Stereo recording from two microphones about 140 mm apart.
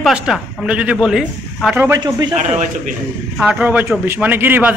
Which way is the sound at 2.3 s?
60° right (ahead or behind).